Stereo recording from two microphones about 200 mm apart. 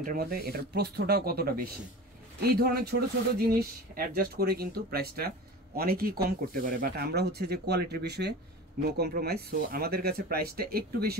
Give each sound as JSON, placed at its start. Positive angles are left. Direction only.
{"t": 0.0, "sound": "speech", "side_deg": -45}